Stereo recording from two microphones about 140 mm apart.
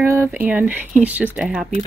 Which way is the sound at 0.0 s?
20° right (ahead or behind).